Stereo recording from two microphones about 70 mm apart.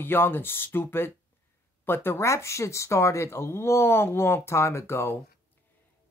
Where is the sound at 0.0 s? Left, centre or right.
Left.